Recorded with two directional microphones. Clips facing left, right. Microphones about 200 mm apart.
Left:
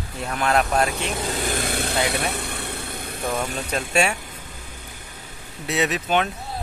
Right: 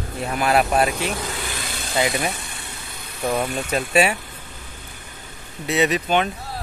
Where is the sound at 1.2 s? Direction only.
40° left (ahead or behind); by 3.2 s 55° left (ahead or behind).